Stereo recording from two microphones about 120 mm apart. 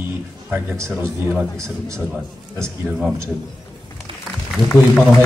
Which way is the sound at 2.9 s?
5° right (ahead or behind).